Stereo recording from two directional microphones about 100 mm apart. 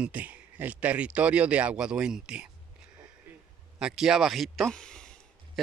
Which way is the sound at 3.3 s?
15° right (ahead or behind).